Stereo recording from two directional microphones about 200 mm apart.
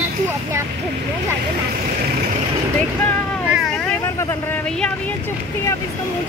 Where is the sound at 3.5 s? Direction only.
Centre (ahead or behind).